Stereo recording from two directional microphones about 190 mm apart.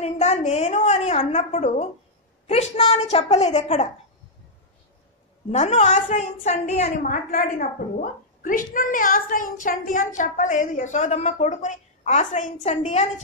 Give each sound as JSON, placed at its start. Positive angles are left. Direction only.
{"t": 0.0, "sound": "a woman's voice", "side_deg": 35}
{"t": 5.5, "sound": "a woman's voice", "side_deg": 35}